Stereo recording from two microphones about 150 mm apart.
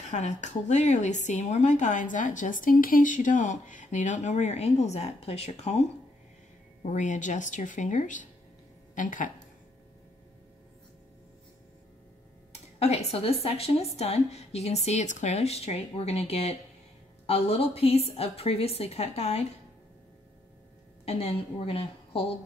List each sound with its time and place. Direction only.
0.0 s speech: 50° left (ahead or behind)
12.7 s speech: 45° left (ahead or behind)
21.0 s a woman's voice: 40° left (ahead or behind)